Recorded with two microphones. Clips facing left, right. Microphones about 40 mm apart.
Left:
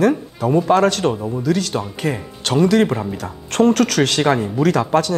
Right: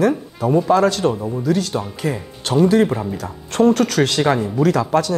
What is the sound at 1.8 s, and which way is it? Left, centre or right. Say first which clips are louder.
Speech: left 1 dB; left.